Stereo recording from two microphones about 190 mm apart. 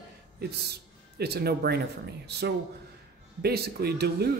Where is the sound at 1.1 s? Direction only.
55° right (ahead or behind).